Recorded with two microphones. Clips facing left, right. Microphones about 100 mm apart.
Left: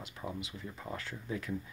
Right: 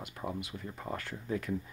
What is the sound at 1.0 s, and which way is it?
Speech, 50° right (ahead or behind).